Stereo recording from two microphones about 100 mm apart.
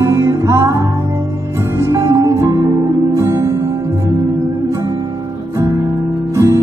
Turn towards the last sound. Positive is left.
turn(degrees=-30)  # may be behind; listen again after turning